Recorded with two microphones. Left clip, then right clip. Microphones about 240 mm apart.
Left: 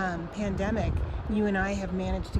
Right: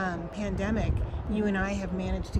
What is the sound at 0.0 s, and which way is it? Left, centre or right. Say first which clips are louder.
Speech: left 1 dB; centre.